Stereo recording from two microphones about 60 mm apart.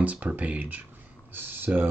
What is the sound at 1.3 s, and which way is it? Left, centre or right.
Speech, right.